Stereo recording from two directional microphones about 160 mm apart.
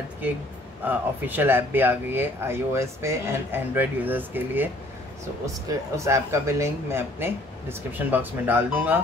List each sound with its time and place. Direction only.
0.8 s speech: 10° right (ahead or behind)